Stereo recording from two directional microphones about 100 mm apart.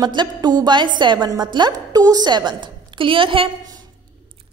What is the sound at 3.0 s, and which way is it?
Speech, 60° right (ahead or behind).